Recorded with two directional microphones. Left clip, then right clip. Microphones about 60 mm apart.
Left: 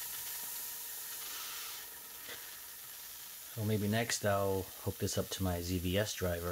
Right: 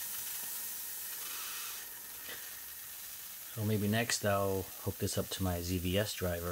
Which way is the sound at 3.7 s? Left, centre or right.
Centre.